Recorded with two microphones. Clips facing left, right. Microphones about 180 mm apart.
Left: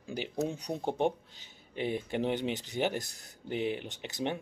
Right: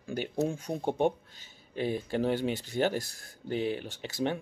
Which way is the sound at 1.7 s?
20° left (ahead or behind).